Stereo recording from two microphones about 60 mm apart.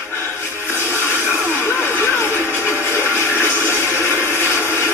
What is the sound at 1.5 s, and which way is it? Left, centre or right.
Music, left.